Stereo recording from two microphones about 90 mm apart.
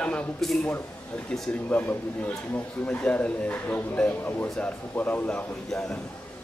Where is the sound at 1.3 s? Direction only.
20° left (ahead or behind).